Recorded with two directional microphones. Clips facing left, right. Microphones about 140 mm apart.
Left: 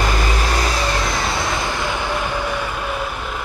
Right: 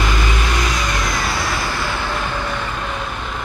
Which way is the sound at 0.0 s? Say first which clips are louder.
Left 1 dB; 35° left (ahead or behind).